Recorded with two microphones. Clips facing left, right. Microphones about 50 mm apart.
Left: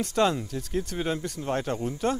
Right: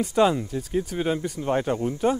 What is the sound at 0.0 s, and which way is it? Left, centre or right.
Speech, centre.